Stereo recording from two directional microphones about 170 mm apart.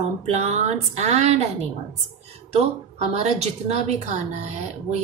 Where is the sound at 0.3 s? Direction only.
40° right (ahead or behind).